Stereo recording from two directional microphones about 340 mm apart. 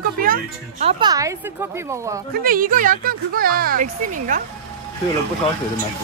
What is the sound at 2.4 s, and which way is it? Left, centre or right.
Speech, right.